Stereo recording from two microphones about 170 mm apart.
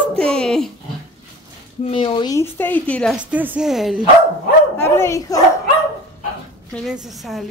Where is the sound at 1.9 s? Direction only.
30° left (ahead or behind); by 3.1 s 10° left (ahead or behind).